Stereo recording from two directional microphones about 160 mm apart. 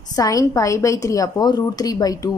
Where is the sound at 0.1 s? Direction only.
20° left (ahead or behind).